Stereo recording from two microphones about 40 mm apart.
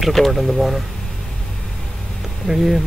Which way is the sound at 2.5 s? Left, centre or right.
Centre.